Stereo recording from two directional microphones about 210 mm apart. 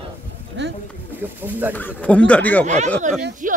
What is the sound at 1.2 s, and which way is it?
Speech, 10° right (ahead or behind).